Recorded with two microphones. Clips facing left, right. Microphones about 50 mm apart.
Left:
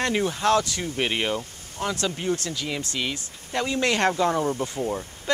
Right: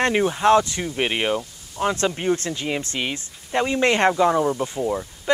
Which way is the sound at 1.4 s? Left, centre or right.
Right.